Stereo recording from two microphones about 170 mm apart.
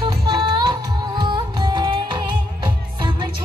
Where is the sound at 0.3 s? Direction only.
25° right (ahead or behind).